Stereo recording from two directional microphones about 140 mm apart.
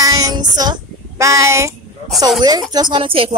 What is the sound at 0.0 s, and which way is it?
Child singing, 25° right (ahead or behind).